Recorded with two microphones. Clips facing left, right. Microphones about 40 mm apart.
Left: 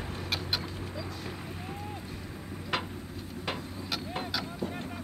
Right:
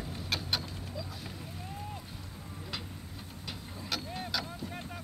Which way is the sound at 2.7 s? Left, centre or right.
Left.